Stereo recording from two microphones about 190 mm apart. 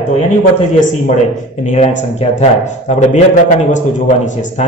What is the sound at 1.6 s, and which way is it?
A man's voice, 35° left (ahead or behind).